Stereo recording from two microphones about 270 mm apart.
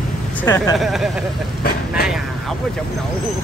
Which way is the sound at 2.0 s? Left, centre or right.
Centre.